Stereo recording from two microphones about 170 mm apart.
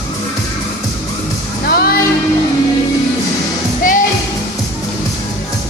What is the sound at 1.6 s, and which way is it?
Music, 65° left (ahead or behind).